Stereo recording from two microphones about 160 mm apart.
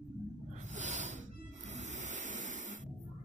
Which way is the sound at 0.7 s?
50° right (ahead or behind).